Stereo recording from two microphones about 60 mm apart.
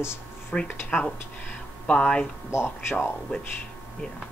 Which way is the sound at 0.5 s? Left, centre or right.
Centre.